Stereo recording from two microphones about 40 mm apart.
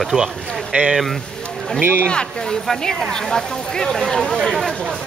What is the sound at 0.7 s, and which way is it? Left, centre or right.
Speech, right.